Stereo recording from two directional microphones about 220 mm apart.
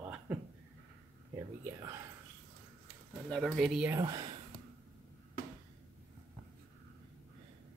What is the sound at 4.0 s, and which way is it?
Speech, 20° right (ahead or behind).